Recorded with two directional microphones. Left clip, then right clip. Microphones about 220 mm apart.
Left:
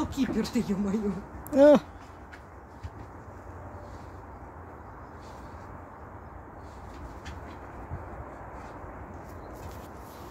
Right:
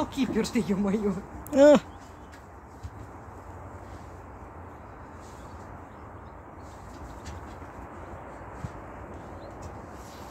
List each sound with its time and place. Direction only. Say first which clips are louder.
0.0 s speech: right 2 dB; 30° right (ahead or behind)
1.5 s speech: right 1 dB; centre (ahead or behind)